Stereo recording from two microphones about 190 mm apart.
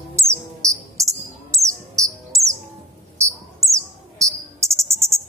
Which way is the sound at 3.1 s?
15° right (ahead or behind).